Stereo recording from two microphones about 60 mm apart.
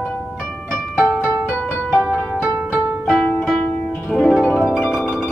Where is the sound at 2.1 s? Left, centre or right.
Centre.